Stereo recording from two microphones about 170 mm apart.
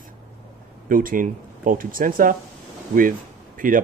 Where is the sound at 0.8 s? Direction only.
55° right (ahead or behind).